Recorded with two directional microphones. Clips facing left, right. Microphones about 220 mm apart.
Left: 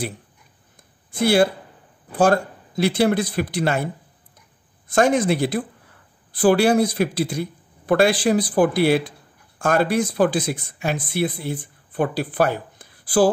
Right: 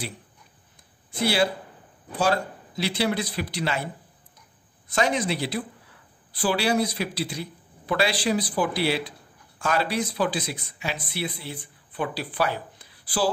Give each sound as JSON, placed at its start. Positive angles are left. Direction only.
{"t": 1.1, "sound": "speech", "side_deg": 50}